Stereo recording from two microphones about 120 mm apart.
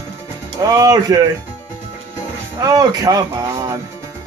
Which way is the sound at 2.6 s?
30° right (ahead or behind).